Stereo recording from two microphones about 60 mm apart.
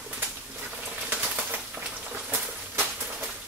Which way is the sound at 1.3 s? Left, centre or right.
Right.